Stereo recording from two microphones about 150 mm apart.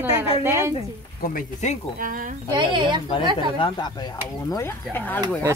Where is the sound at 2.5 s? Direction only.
30° right (ahead or behind).